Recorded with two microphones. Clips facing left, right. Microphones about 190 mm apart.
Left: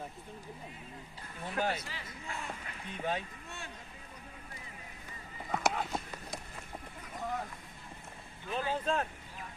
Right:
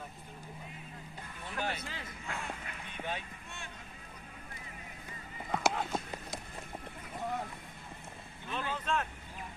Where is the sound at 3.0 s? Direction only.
40° left (ahead or behind).